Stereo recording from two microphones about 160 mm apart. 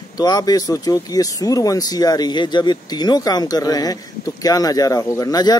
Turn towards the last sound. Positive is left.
turn(degrees=25)  # may be behind; listen again after turning